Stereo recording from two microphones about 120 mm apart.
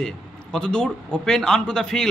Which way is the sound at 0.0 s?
5° left (ahead or behind).